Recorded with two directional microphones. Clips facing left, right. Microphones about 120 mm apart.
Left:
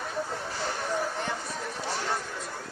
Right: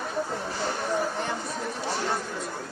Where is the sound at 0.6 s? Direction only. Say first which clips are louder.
Right 3 dB; 25° right (ahead or behind).